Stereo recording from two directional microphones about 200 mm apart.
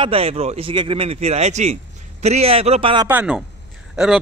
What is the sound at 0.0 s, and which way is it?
A man's voice, 30° right (ahead or behind).